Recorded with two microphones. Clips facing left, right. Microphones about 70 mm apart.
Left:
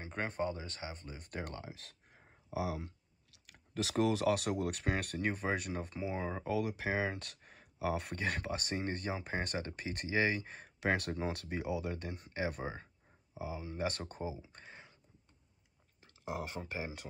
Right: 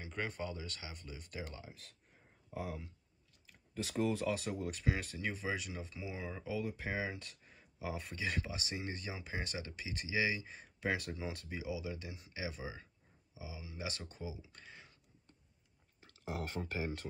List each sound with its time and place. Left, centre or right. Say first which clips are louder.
0.0 s speech: left 4 dB; left
6.5 s speech: left 4 dB; left
16.0 s speech: left 2 dB; centre